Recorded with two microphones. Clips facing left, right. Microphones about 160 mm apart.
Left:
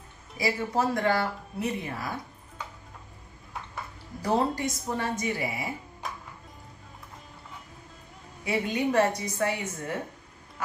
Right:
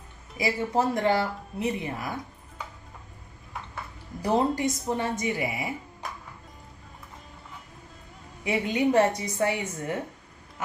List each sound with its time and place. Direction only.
0.4 s speech: 20° right (ahead or behind)
4.2 s speech: 20° right (ahead or behind)
8.5 s speech: 20° right (ahead or behind)